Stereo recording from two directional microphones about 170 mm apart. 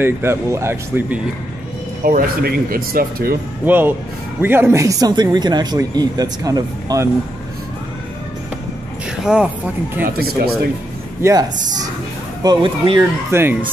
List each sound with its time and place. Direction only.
0.0 s speech: 15° right (ahead or behind)
2.0 s speech: 60° right (ahead or behind)
3.6 s speech: 10° right (ahead or behind)
9.2 s speech: 5° right (ahead or behind)
10.0 s speech: 65° right (ahead or behind)
11.2 s speech: 15° right (ahead or behind)
12.4 s speech: 30° right (ahead or behind)
13.3 s speech: 15° right (ahead or behind)